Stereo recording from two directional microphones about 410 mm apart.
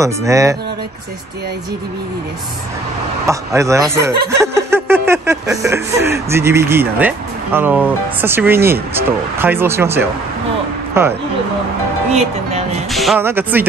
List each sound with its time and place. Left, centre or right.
0.0 s speech: centre
3.3 s speech: centre
4.4 s a sound: centre
8.9 s speech: centre
12.9 s speech: centre